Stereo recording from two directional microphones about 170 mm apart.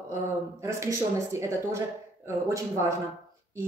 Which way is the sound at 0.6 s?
15° right (ahead or behind).